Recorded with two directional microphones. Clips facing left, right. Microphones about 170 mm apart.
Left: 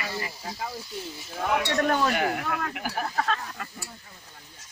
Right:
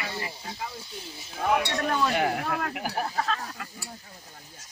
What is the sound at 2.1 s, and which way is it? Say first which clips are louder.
Speech: right 1 dB; 30° right (ahead or behind).